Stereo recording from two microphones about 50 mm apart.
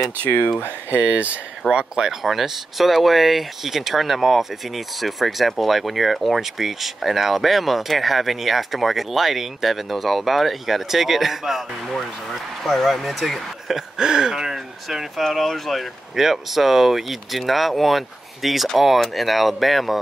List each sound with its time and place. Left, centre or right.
0.8 s speech: right
1.7 s speech: centre
2.2 s speech: centre
13.7 s speech: centre